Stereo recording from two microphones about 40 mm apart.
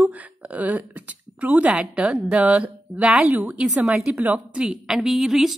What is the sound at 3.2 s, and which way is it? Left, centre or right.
Speech, right.